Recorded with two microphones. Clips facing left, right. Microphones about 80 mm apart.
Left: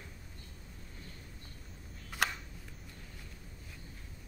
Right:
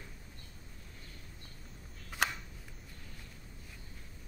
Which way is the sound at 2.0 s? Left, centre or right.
Centre.